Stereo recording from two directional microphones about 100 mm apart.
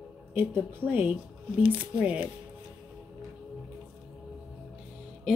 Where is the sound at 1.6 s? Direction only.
55° right (ahead or behind).